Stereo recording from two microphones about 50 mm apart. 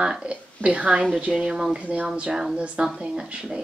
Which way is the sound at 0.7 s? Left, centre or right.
Right.